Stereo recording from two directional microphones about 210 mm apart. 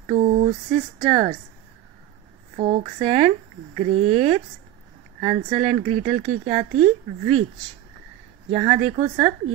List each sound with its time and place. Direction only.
0.1 s a sound: 30° right (ahead or behind)
1.0 s speech: 25° right (ahead or behind)
2.5 s speech: 30° right (ahead or behind)
8.5 s speech: 30° right (ahead or behind)